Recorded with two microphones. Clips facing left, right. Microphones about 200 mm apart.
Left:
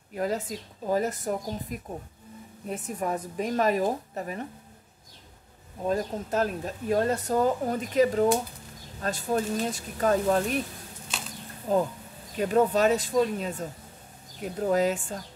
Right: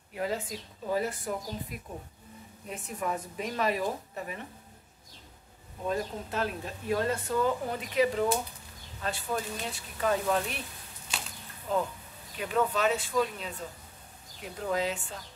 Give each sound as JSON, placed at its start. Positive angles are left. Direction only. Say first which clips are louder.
{"t": 0.1, "sound": "a woman's voice", "louder": "left 4 dB", "side_deg": 40}
{"t": 5.9, "sound": "speech", "louder": "left 4 dB", "side_deg": 40}
{"t": 11.7, "sound": "a woman's voice", "louder": "left 5 dB", "side_deg": 40}